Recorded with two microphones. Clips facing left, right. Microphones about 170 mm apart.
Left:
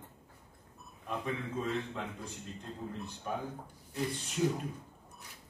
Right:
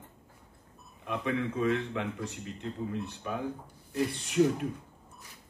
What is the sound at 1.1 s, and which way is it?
A man's voice, 70° right (ahead or behind).